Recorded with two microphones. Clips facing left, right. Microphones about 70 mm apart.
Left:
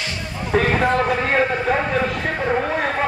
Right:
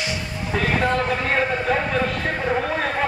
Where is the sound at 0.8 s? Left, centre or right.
Centre.